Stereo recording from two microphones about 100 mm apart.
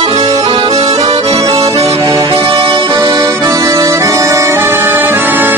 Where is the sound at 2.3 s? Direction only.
55° right (ahead or behind).